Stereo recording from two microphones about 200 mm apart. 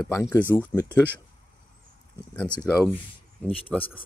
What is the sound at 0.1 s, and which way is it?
Speech, 15° left (ahead or behind).